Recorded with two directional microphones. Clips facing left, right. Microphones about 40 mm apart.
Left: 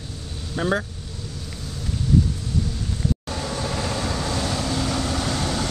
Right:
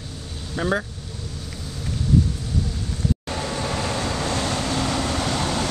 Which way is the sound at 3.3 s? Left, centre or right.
Centre.